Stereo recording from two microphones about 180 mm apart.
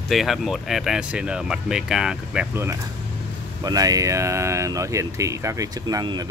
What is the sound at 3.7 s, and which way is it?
Speech, 20° right (ahead or behind).